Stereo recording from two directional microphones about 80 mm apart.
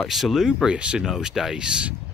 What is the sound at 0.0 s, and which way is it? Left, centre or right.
Speech, centre.